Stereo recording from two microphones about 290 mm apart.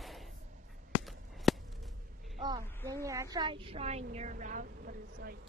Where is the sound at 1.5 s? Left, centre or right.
Centre.